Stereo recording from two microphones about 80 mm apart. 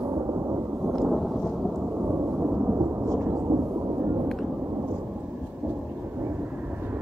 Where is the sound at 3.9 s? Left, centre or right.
Right.